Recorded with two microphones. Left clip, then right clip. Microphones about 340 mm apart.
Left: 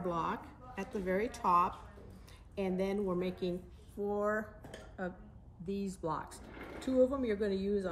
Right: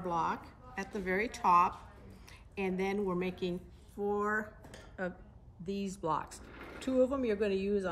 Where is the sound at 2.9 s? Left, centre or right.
Centre.